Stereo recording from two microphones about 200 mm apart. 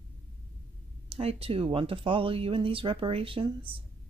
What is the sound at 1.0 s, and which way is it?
A woman's voice, 30° right (ahead or behind).